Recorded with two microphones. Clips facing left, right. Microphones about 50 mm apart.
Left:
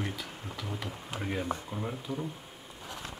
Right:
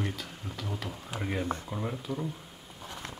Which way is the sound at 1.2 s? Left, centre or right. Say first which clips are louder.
Right 1 dB; centre.